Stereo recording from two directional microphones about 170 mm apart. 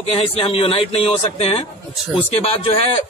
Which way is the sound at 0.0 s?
35° left (ahead or behind).